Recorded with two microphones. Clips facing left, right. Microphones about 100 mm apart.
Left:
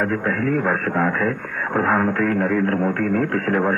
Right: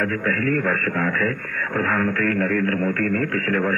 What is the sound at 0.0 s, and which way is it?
Speech, 25° left (ahead or behind).